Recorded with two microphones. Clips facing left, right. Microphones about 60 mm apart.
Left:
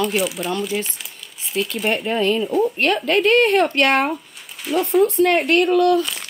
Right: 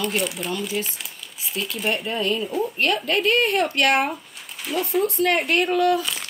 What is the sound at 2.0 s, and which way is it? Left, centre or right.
Speech, left.